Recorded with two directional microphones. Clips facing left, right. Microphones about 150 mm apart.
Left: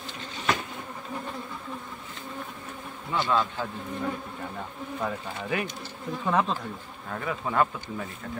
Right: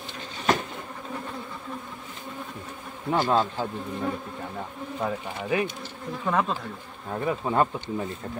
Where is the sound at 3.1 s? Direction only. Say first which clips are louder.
Right 3 dB; 45° right (ahead or behind).